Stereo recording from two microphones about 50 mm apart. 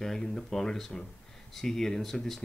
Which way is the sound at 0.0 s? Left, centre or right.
Centre.